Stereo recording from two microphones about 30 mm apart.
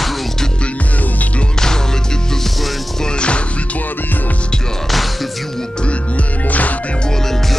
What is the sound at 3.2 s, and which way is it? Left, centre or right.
Music, left.